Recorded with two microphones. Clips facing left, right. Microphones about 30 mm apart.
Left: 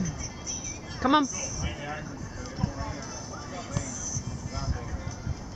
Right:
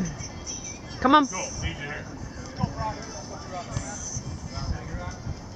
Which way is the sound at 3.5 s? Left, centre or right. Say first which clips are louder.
Right 1 dB; centre.